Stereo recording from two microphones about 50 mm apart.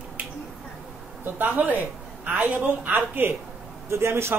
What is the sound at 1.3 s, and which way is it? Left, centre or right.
A woman's voice, right.